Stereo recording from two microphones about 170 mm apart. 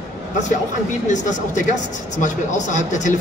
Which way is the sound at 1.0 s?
45° left (ahead or behind).